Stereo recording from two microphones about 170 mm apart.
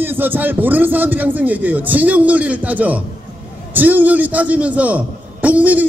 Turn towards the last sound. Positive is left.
turn(degrees=-10)  # may be behind; listen again after turning